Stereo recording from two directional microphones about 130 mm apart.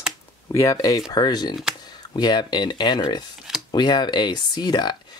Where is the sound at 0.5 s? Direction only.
25° left (ahead or behind).